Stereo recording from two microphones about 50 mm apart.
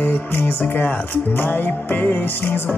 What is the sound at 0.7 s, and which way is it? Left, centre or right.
Speech, left.